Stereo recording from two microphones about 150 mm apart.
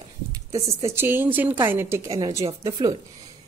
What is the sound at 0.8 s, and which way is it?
A woman's voice, 15° right (ahead or behind).